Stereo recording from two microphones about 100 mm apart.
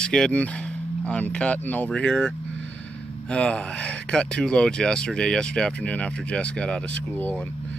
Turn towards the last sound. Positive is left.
turn(degrees=15)  # may be behind; listen again after turning